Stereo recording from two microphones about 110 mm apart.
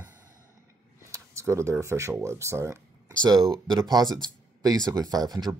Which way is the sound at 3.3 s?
Centre (ahead or behind).